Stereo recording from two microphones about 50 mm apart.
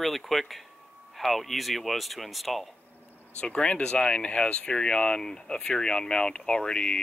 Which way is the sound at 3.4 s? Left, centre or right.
Left.